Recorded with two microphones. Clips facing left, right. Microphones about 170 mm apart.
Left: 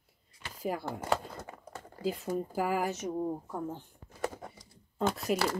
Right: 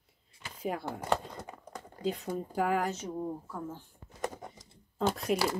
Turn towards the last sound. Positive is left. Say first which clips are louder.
# even
turn(degrees=0)  # may be behind; listen again after turning